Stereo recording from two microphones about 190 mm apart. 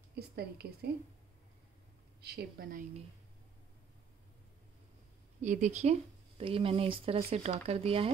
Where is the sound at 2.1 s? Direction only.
55° right (ahead or behind).